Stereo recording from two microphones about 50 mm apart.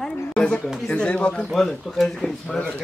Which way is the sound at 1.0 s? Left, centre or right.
Left.